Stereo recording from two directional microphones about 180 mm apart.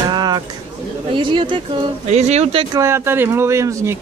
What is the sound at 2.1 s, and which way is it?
Speech, 40° right (ahead or behind).